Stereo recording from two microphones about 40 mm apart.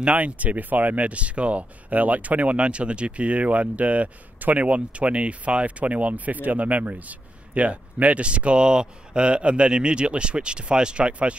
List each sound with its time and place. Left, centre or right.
0.0 s speech: right